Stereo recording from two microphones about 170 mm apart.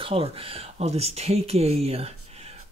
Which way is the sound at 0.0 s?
35° right (ahead or behind).